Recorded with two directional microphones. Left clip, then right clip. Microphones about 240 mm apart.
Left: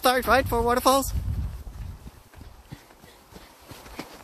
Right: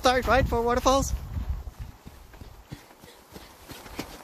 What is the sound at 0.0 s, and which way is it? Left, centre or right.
Speech, centre.